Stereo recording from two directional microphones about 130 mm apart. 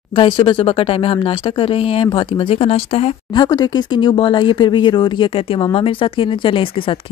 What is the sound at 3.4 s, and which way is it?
Speech, 30° left (ahead or behind).